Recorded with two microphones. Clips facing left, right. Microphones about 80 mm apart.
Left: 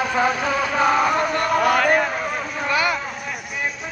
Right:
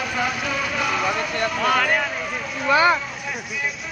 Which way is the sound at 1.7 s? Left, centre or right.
Centre.